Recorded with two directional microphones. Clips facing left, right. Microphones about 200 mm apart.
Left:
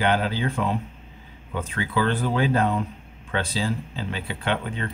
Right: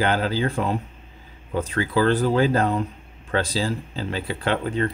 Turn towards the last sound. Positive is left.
turn(degrees=-40)  # may be behind; listen again after turning